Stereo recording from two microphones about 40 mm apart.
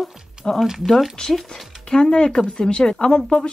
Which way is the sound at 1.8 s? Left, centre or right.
Centre.